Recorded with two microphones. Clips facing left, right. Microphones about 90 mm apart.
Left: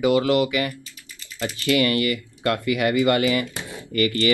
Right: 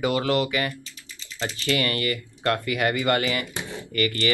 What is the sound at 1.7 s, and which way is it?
Speech, 35° right (ahead or behind).